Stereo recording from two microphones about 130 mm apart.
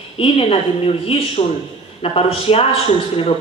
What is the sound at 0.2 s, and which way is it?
Speech, 50° left (ahead or behind).